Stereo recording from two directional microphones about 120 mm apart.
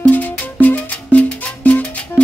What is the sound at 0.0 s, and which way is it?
Music, 15° left (ahead or behind).